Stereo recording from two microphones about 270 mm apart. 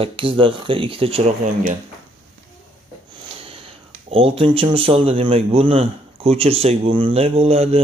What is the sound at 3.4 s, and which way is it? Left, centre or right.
Speech, right.